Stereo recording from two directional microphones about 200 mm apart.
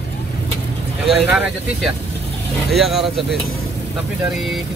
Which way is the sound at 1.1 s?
5° right (ahead or behind).